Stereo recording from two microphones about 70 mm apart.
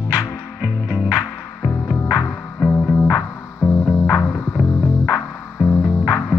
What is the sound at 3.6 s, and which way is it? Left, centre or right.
Music, left.